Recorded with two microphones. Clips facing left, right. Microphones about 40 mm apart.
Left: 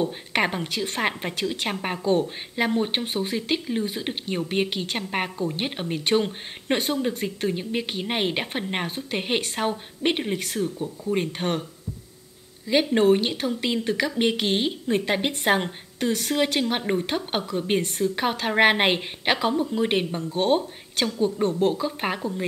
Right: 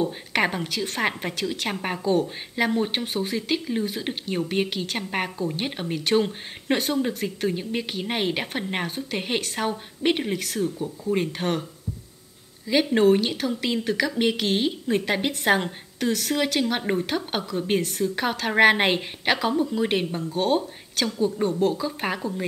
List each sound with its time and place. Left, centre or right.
0.0 s a woman's voice: centre
12.6 s a woman's voice: centre; by 21.8 s left
21.8 s a woman's voice: centre